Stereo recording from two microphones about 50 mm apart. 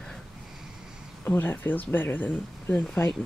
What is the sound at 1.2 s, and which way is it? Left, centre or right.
Speech, left.